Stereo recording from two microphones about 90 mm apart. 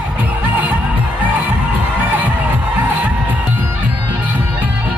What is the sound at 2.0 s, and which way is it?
Music, 15° right (ahead or behind).